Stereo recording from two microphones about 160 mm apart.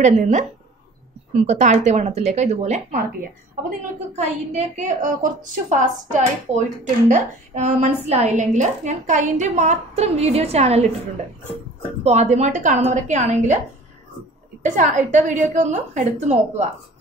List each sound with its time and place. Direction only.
0.2 s a woman's voice: 50° right (ahead or behind)
4.1 s a woman's voice: 45° right (ahead or behind)
12.0 s a woman's voice: 45° right (ahead or behind)
14.6 s a woman's voice: 50° right (ahead or behind)